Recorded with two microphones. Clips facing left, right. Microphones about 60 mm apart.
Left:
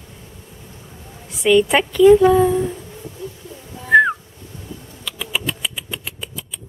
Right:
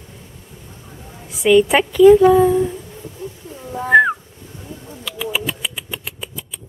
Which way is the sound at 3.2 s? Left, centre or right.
Right.